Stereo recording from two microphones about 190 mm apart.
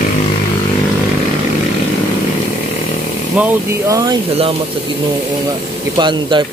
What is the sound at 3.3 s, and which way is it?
Speech, 10° right (ahead or behind).